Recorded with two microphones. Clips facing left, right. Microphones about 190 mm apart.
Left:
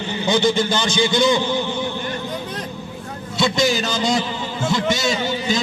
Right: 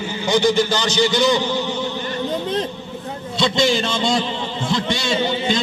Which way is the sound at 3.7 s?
5° left (ahead or behind).